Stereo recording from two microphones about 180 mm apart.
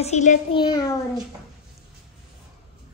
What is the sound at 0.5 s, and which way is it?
Speech, 25° left (ahead or behind).